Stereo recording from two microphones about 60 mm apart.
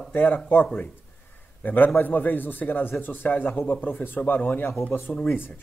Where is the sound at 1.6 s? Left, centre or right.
Left.